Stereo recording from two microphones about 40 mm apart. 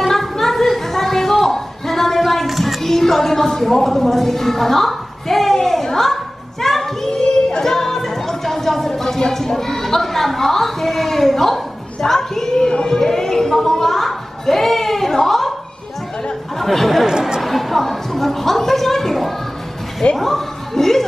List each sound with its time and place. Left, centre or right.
0.1 s a sound: centre
6.6 s children playing: centre
7.6 s music: centre
16.5 s speech: centre
17.0 s chatter: centre
17.4 s a sound: centre
20.2 s speech: centre